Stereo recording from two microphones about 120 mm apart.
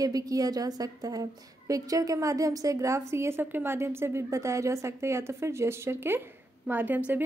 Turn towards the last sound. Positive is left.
turn(degrees=-15)  # may be behind; listen again after turning